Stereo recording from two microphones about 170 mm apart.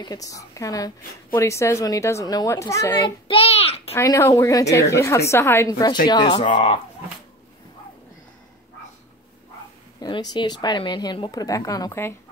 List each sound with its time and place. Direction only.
0.0 s a woman's voice: 20° left (ahead or behind)
3.3 s a child's voice: 35° left (ahead or behind)
3.9 s a woman's voice: 15° left (ahead or behind); by 6.8 s 35° left (ahead or behind)
9.9 s a woman's voice: 25° left (ahead or behind)